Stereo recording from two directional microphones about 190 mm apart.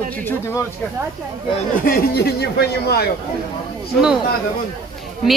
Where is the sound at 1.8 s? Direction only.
55° left (ahead or behind).